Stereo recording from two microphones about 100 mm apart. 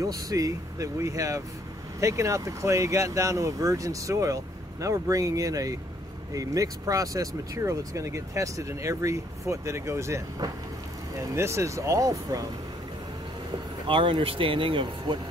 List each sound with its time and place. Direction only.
0.0 s speech: 35° right (ahead or behind)
13.8 s speech: 60° right (ahead or behind)